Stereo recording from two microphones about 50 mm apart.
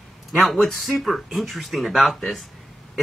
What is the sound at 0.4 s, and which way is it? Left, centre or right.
Speech, centre.